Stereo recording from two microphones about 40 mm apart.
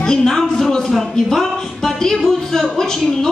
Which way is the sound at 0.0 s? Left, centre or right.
Centre.